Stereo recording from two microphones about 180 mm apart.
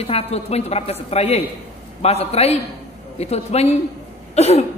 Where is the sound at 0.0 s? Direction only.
35° left (ahead or behind).